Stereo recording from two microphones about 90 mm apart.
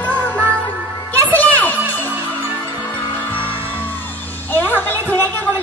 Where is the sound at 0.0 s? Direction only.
20° left (ahead or behind).